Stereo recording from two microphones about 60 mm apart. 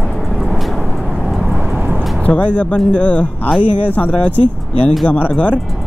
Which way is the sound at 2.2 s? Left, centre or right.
Left.